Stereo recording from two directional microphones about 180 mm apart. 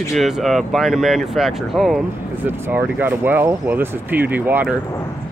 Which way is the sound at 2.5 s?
15° right (ahead or behind).